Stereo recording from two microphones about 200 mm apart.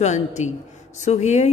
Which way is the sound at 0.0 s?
35° left (ahead or behind).